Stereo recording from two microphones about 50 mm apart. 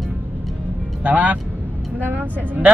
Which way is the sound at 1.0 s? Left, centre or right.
Right.